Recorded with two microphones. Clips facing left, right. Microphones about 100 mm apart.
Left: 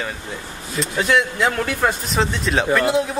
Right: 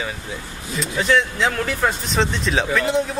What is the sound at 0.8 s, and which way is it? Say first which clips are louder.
Speech: left 1 dB; 5° left (ahead or behind).